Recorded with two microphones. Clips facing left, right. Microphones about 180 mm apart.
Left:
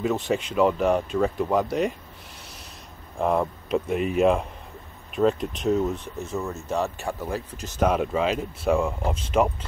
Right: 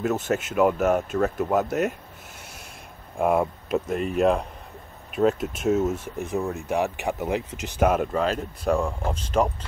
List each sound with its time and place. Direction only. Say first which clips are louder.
0.0 s speech: even; 5° right (ahead or behind)
3.2 s speech: right 1 dB; 10° right (ahead or behind)
3.9 s speech: left 1 dB; centre (ahead or behind)
6.1 s speech: right 3 dB; 15° right (ahead or behind)
7.6 s speech: even; 10° right (ahead or behind); by 9.7 s 5° left (ahead or behind)